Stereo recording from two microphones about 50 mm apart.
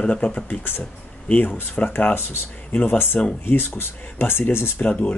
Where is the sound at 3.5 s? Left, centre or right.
Left.